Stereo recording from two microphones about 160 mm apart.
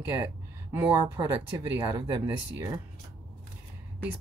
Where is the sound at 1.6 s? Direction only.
15° right (ahead or behind).